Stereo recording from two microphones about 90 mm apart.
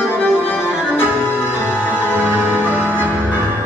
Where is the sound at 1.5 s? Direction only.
20° left (ahead or behind).